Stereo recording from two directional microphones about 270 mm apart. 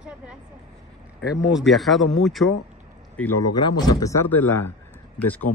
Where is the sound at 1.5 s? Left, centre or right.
Centre.